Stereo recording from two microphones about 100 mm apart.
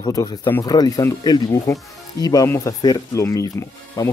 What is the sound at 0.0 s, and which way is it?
Speech, 35° left (ahead or behind).